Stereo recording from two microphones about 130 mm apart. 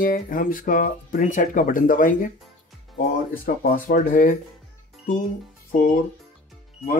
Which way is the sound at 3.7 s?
90° left.